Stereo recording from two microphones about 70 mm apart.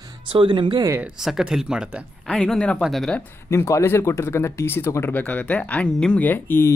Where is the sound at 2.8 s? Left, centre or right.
Centre.